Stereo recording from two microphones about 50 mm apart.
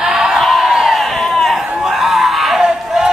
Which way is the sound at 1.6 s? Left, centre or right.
Centre.